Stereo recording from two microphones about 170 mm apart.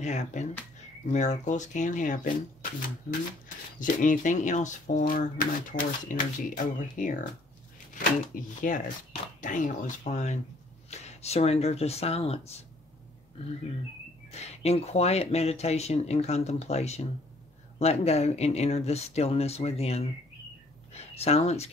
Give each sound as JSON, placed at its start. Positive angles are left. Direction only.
{"t": 0.0, "sound": "speech", "side_deg": 45}
{"t": 8.4, "sound": "speech", "side_deg": 50}
{"t": 14.3, "sound": "speech", "side_deg": 35}